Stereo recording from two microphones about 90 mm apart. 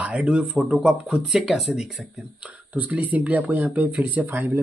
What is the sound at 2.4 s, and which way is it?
Speech, 15° right (ahead or behind).